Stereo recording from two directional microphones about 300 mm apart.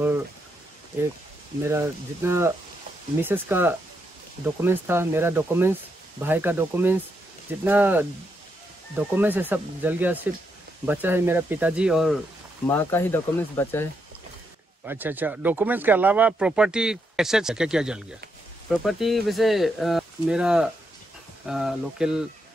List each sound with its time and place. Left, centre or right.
1.6 s speech: centre
14.9 s speech: centre